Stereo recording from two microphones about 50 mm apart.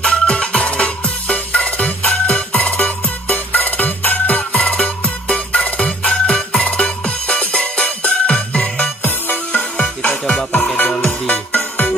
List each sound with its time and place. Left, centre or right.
0.0 s music: left
11.1 s music: left